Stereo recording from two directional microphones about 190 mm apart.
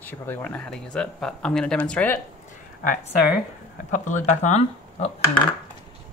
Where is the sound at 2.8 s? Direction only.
45° left (ahead or behind).